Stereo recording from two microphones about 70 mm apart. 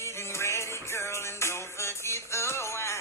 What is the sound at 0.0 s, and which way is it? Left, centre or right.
Music, left.